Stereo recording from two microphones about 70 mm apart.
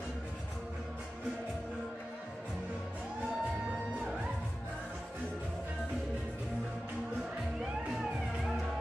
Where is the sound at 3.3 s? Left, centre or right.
Centre.